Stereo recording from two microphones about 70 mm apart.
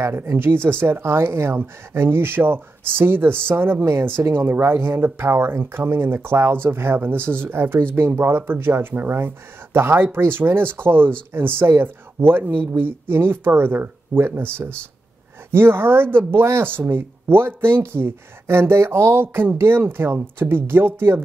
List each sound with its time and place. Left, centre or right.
0.0 s speech: right
15.5 s speech: right